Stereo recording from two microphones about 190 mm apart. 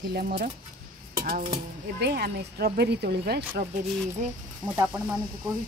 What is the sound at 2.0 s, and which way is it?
Speech, 60° right (ahead or behind).